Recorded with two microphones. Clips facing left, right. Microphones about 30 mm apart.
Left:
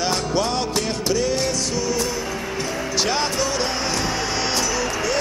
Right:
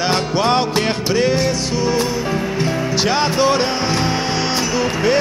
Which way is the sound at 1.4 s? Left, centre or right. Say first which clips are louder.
Right 5 dB; right.